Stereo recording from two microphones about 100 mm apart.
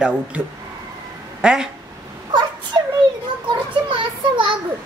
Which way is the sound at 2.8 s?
50° right (ahead or behind).